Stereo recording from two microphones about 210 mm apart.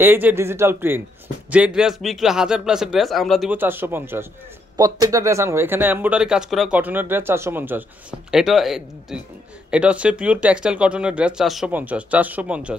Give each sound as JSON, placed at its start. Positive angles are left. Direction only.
{"t": 0.0, "sound": "speech", "side_deg": -10}